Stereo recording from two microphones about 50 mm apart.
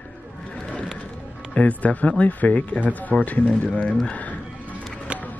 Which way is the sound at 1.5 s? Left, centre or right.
Left.